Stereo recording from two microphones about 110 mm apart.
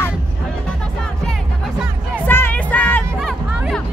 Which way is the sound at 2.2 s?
15° left (ahead or behind).